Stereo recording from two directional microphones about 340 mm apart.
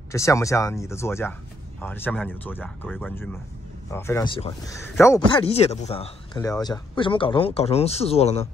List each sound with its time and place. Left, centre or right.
0.1 s speech: centre